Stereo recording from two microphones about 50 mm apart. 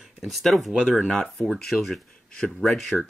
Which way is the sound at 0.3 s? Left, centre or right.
Centre.